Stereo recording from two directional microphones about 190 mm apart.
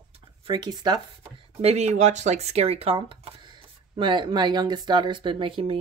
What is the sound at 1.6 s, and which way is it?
Speech, 35° right (ahead or behind).